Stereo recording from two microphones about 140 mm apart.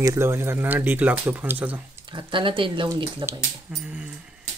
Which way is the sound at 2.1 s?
35° right (ahead or behind).